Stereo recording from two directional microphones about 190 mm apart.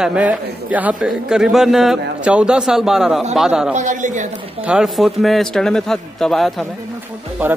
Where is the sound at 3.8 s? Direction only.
40° right (ahead or behind).